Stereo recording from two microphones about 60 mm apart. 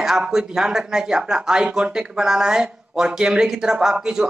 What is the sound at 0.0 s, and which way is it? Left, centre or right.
Speech, centre.